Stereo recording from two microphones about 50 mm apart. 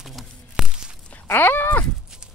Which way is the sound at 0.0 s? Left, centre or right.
Centre.